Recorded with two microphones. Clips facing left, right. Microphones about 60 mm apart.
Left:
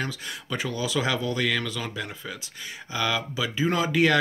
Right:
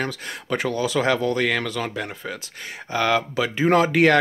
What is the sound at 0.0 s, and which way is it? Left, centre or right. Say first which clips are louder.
Speech: right 4 dB; right.